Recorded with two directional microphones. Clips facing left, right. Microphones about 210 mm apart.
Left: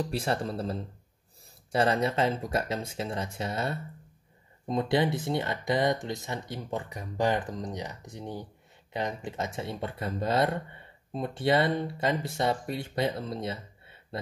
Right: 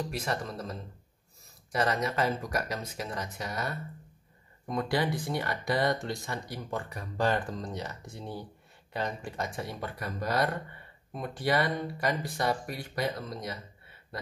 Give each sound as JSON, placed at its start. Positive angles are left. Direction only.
{"t": 0.0, "sound": "speech", "side_deg": 30}